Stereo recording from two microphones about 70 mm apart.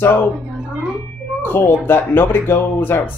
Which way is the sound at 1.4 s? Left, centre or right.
Left.